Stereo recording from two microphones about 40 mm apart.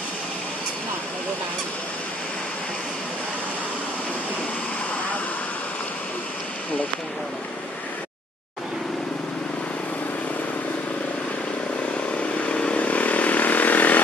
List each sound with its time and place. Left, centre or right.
12.4 s vehicle: left
12.8 s vehicle: left